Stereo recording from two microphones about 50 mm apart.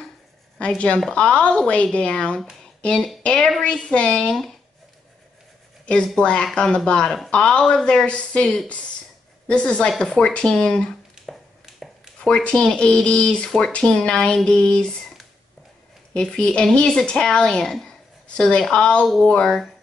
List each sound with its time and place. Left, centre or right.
0.6 s a woman's voice: left
5.9 s speech: left
9.5 s speech: centre
11.8 s a sound: centre
12.2 s speech: centre